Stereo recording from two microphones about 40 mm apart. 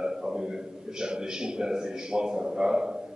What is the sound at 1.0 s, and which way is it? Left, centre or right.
A man's voice, right.